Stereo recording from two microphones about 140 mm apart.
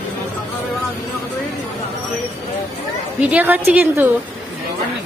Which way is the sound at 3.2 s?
10° right (ahead or behind).